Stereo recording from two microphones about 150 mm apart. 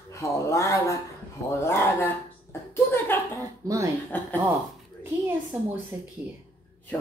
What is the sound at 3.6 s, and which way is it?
Speech, 20° right (ahead or behind).